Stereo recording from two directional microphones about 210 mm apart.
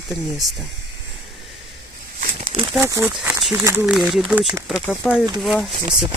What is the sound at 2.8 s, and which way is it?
Speech, 15° right (ahead or behind).